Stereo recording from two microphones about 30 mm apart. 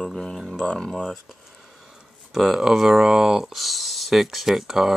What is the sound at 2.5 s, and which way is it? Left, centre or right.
Speech, centre.